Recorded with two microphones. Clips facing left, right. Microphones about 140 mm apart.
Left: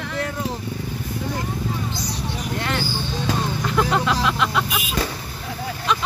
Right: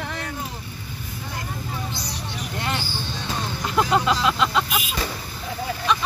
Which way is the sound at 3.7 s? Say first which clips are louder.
Right 1 dB; 15° right (ahead or behind).